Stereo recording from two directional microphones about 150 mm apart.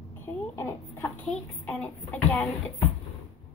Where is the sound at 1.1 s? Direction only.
5° left (ahead or behind).